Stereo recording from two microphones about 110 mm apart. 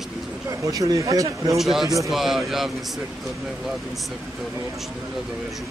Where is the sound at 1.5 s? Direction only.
Centre (ahead or behind).